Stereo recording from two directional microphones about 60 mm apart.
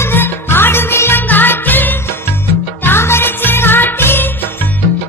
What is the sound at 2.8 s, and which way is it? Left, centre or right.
Music, left.